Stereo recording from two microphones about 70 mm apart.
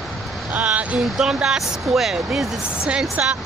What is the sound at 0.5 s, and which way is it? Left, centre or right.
Speech, right.